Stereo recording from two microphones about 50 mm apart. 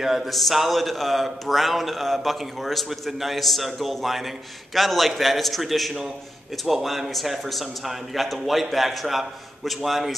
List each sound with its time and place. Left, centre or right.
0.0 s a man's voice: centre